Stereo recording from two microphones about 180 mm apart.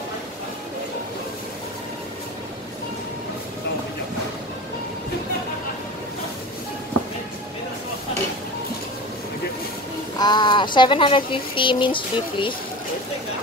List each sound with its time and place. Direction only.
10.1 s speech: 25° left (ahead or behind)